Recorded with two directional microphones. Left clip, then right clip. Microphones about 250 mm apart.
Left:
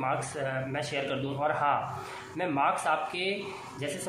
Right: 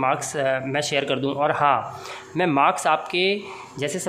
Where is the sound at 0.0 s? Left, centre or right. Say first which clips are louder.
Right 9 dB; right.